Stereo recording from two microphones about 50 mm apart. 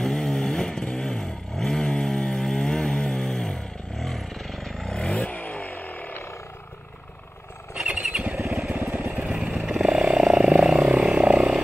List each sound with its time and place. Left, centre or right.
0.0 s vehicle: centre
4.0 s vehicle: centre
5.0 s vehicle: left
7.7 s wild animals: centre
8.6 s vehicle: right
9.2 s vehicle: centre
10.9 s frog: right